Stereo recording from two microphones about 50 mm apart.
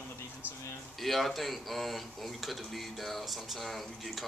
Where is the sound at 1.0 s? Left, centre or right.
Centre.